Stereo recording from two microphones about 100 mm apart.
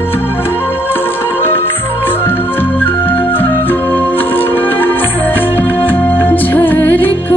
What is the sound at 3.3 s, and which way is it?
Organ, 20° left (ahead or behind).